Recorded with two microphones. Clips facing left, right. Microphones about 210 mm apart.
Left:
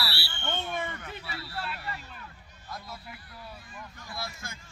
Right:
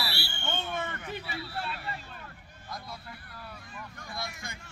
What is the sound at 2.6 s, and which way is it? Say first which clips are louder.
Speech: even; 5° left (ahead or behind).